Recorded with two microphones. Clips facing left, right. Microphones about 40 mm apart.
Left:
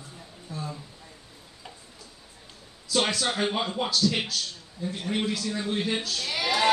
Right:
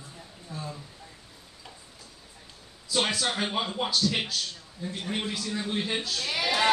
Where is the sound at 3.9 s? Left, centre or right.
Centre.